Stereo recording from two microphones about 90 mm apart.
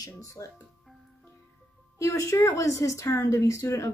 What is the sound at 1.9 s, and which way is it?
Speech, 35° left (ahead or behind).